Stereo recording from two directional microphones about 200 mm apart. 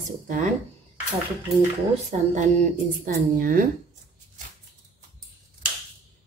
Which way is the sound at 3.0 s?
45° right (ahead or behind).